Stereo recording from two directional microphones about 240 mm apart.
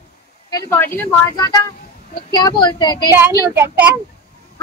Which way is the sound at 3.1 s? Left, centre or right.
Centre.